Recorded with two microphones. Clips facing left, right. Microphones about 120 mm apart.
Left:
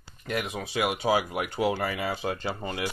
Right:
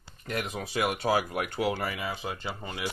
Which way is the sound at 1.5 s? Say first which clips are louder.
Left 4 dB; 25° left (ahead or behind).